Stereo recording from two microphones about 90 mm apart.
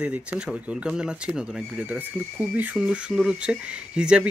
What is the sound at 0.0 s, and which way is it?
Speech, 15° right (ahead or behind).